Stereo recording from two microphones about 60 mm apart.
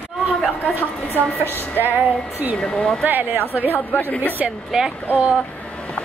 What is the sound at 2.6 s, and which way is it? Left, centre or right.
Speech, centre.